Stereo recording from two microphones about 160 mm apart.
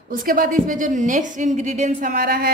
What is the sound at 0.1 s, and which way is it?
A woman's voice, 60° right (ahead or behind).